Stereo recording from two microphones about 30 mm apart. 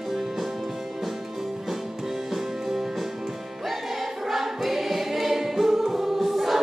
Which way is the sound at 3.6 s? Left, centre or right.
Centre.